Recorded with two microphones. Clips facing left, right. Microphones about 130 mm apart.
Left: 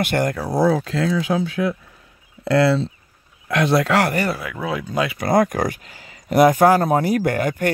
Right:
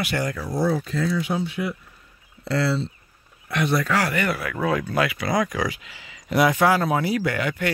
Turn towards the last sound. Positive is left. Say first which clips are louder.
# left 4 dB
turn(degrees=45)  # may be behind; listen again after turning